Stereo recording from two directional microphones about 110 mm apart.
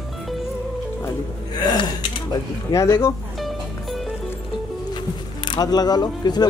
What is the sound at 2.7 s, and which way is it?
Speech, 25° left (ahead or behind).